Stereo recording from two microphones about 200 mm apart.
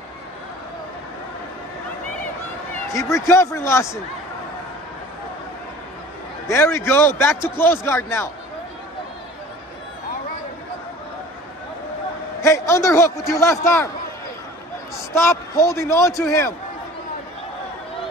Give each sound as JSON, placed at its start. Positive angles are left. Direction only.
{"t": 2.9, "sound": "a man's voice", "side_deg": 15}
{"t": 6.4, "sound": "a man's voice", "side_deg": 10}
{"t": 12.4, "sound": "a man's voice", "side_deg": 15}
{"t": 15.0, "sound": "a man's voice", "side_deg": 15}